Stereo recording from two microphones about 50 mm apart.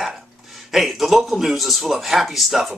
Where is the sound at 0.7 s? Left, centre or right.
Centre.